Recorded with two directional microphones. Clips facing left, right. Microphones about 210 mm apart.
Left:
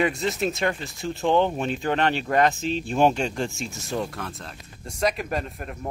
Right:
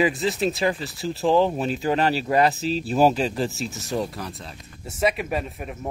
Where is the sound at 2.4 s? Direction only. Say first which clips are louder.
Left 1 dB; 35° right (ahead or behind).